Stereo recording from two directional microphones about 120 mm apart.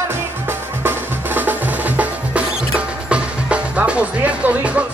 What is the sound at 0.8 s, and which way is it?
Music, 15° right (ahead or behind).